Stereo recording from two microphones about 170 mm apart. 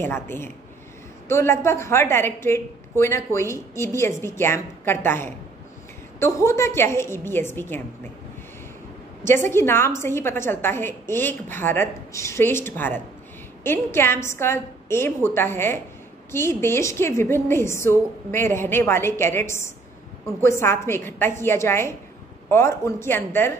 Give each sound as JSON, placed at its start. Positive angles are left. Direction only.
{"t": 0.0, "sound": "a woman's voice", "side_deg": 15}
{"t": 9.2, "sound": "a woman's voice", "side_deg": 15}